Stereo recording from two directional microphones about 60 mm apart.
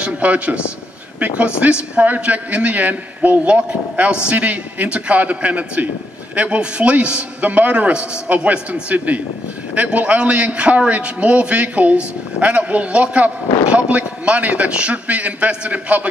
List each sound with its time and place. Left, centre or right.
0.0 s a man's voice: right